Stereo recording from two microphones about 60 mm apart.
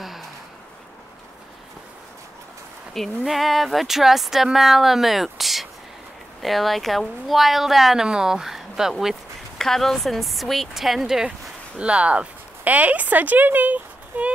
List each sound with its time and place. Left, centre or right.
0.0 s a sound: centre
2.9 s speech: centre
9.6 s speech: centre
11.8 s speech: centre